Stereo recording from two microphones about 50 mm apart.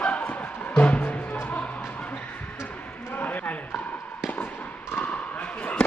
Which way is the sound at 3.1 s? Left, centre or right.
Left.